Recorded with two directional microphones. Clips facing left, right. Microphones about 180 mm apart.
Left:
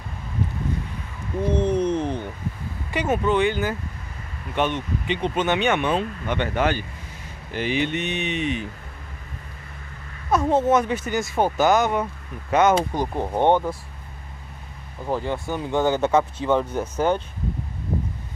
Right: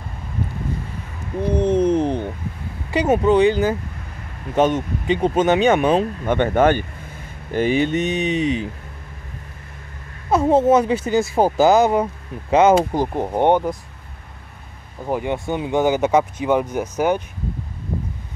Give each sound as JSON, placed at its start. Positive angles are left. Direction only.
{"t": 1.6, "sound": "a sound", "side_deg": -15}
{"t": 2.9, "sound": "speech", "side_deg": -35}
{"t": 10.3, "sound": "speech", "side_deg": -30}
{"t": 12.9, "sound": "speech", "side_deg": -15}
{"t": 15.0, "sound": "speech", "side_deg": -15}